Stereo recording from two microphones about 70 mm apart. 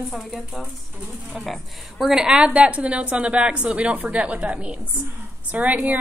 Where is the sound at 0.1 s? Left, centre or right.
Centre.